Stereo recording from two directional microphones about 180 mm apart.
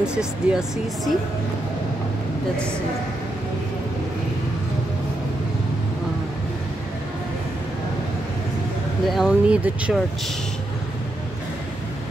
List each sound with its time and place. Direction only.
0.0 s speech: 5° right (ahead or behind)
9.0 s speech: centre (ahead or behind)